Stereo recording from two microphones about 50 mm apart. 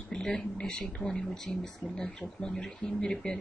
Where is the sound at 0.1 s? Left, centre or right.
Centre.